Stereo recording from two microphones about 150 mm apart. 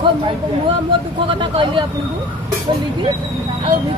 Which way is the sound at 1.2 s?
35° right (ahead or behind).